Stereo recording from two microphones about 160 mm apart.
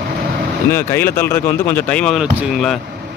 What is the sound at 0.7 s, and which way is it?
Speech, 15° left (ahead or behind).